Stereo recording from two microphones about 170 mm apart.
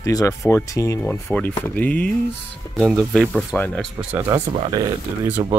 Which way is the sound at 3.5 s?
10° left (ahead or behind).